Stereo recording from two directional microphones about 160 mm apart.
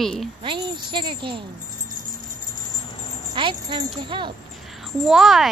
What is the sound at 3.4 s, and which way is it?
Speech, 30° right (ahead or behind).